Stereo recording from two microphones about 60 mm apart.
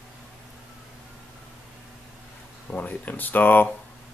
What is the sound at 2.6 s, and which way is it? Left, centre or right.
Speech, left.